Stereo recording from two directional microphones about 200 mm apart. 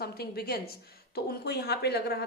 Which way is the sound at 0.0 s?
50° left (ahead or behind).